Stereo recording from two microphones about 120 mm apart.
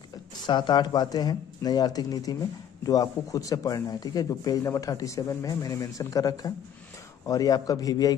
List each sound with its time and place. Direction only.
0.5 s speech: 40° left (ahead or behind)